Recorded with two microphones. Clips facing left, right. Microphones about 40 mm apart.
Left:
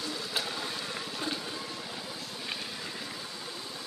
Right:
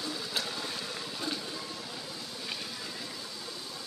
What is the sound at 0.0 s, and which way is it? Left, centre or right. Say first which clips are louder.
Vehicle: left 1 dB; centre.